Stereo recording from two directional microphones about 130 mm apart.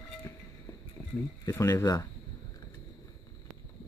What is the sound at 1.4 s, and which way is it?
Speech, 25° left (ahead or behind).